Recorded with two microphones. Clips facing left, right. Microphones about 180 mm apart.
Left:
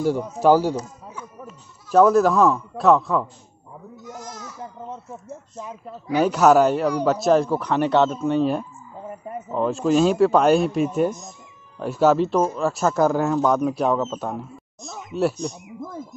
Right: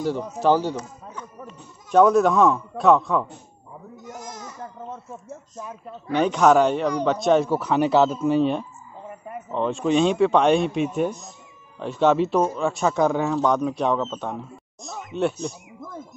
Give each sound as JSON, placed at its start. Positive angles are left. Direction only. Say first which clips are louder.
{"t": 0.0, "sound": "speech", "louder": "left 3 dB", "side_deg": 10}
{"t": 4.1, "sound": "goat", "louder": "even", "side_deg": -20}
{"t": 4.6, "sound": "a sound", "louder": "left 1 dB", "side_deg": 15}
{"t": 5.9, "sound": "speech", "louder": "left 2 dB", "side_deg": 5}